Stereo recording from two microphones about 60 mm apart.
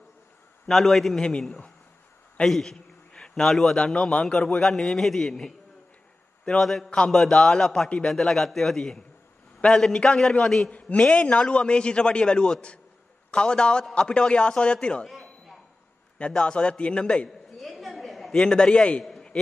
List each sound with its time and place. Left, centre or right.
0.7 s a man's voice: centre
2.4 s a man's voice: centre
3.1 s a sound: centre
3.7 s a man's voice: centre
11.0 s a man's voice: centre
15.0 s a sound: centre
16.2 s a man's voice: centre
17.6 s a sound: centre
18.4 s a man's voice: centre